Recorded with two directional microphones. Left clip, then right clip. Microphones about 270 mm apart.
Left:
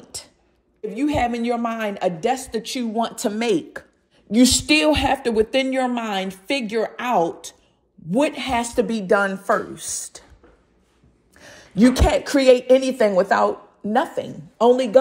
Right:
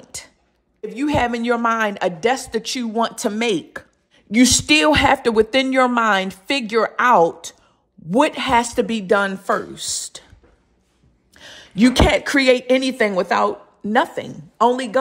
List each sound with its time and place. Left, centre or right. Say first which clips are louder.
0.7 s a woman's voice: right 2 dB; centre
4.3 s speech: right 2 dB; right
4.8 s a woman's voice: right 4 dB; centre
8.7 s a woman's voice: right 1 dB; right
9.4 s a woman's voice: even; right
11.3 s a sound: right 4 dB; right
11.6 s a woman's voice: right 2 dB; centre